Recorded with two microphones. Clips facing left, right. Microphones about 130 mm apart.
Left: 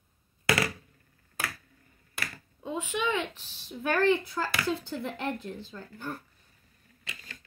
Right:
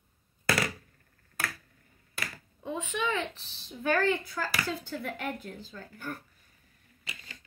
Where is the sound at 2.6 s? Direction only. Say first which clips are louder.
Left 1 dB; 15° left (ahead or behind).